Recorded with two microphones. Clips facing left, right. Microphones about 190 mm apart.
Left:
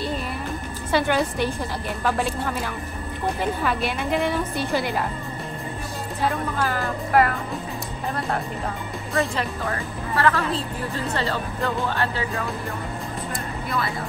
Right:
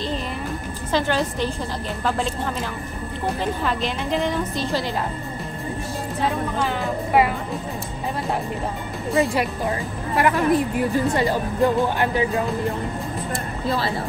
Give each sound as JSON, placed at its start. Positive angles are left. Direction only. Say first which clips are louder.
{"t": 0.9, "sound": "a woman's voice", "louder": "left 1 dB", "side_deg": 10}
{"t": 3.6, "sound": "a woman's voice", "louder": "even", "side_deg": 5}
{"t": 6.2, "sound": "a woman's voice", "louder": "even", "side_deg": 0}
{"t": 9.2, "sound": "speech", "louder": "right 4 dB", "side_deg": -10}
{"t": 13.7, "sound": "speech", "louder": "right 4 dB", "side_deg": -30}